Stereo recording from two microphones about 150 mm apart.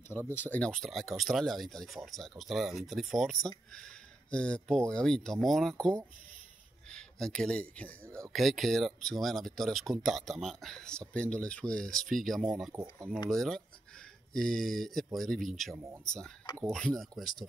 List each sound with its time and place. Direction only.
0.3 s speech: 10° left (ahead or behind)
15.7 s speech: 20° right (ahead or behind)
16.1 s speech: 5° left (ahead or behind)